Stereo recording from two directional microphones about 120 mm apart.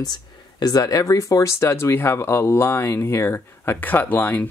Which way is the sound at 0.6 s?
30° left (ahead or behind).